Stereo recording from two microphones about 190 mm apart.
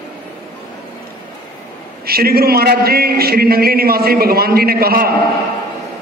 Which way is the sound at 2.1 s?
55° right (ahead or behind).